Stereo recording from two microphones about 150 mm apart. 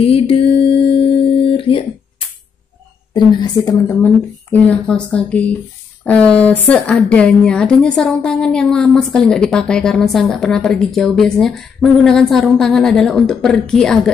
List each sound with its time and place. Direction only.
0.0 s music: 40° left (ahead or behind)
3.1 s a woman's voice: 30° left (ahead or behind)
3.9 s speech: 10° left (ahead or behind)